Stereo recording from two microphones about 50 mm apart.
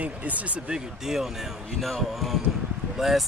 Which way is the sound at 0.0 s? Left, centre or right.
Right.